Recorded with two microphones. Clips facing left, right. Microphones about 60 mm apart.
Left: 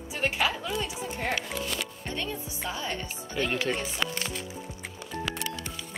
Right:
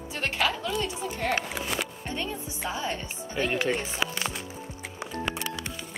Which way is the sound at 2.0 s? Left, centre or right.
Centre.